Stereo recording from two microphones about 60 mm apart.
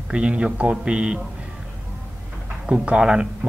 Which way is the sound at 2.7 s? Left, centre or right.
Centre.